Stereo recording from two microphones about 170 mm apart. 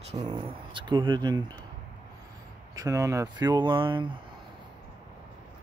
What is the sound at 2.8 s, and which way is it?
Speech, 20° right (ahead or behind).